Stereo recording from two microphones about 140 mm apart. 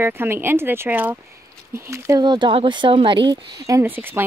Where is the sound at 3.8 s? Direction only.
15° right (ahead or behind).